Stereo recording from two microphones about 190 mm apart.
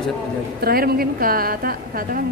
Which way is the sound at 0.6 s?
50° right (ahead or behind).